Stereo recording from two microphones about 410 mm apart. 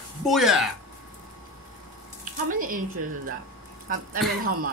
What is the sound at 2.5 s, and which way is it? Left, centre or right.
Speech, centre.